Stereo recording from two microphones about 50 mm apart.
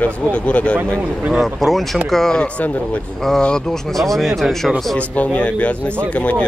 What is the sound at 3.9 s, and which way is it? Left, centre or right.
Speech, centre.